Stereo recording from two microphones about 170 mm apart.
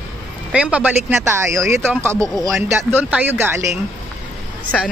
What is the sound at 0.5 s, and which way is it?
Speech, 5° right (ahead or behind).